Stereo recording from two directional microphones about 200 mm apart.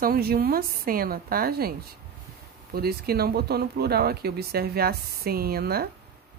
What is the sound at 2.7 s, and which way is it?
Speech, 50° right (ahead or behind).